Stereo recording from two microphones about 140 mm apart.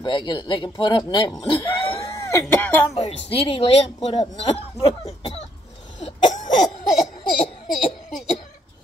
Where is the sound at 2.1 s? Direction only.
20° left (ahead or behind).